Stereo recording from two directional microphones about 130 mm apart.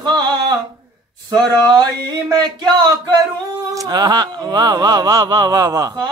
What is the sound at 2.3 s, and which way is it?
Speech, 30° right (ahead or behind).